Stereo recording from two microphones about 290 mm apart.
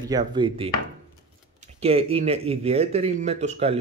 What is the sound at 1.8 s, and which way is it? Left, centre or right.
Speech, right.